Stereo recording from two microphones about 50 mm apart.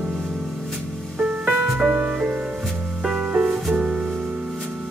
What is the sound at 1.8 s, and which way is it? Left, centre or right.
Music, right.